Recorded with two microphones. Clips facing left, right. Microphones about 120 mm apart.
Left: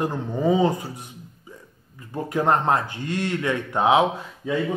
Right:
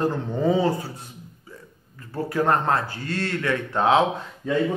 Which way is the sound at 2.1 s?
20° left (ahead or behind).